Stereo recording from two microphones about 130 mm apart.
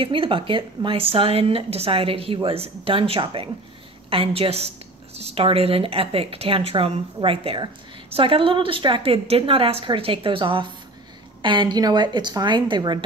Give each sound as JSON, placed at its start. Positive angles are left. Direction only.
{"t": 0.0, "sound": "a woman's voice", "side_deg": -45}